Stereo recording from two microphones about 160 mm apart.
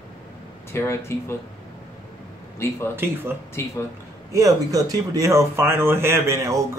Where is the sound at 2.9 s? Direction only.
15° right (ahead or behind).